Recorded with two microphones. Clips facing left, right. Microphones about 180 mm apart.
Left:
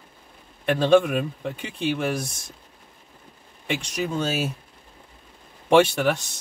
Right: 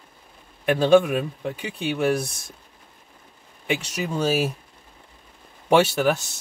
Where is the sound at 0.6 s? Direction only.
5° right (ahead or behind).